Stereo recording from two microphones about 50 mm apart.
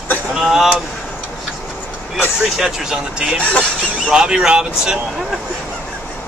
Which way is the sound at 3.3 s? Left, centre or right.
Left.